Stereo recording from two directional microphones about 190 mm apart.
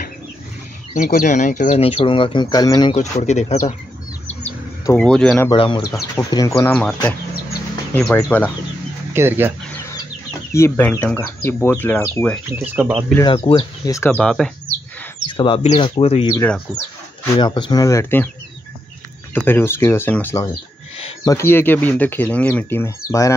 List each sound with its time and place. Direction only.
0.9 s speech: 40° left (ahead or behind); by 3.0 s 20° left (ahead or behind)
3.0 s speech: 35° left (ahead or behind)
4.8 s speech: 5° left (ahead or behind)
5.5 s speech: 25° left (ahead or behind)
6.7 s speech: 5° left (ahead or behind)
9.1 s speech: 15° right (ahead or behind)
10.5 s speech: 15° left (ahead or behind)
12.4 s speech: 10° right (ahead or behind)
13.2 s speech: 25° left (ahead or behind)
14.1 s speech: 5° left (ahead or behind)
15.2 s speech: 25° left (ahead or behind)
16.3 s speech: 5° left (ahead or behind)
17.4 s speech: 25° left (ahead or behind)
19.3 s speech: 10° left (ahead or behind)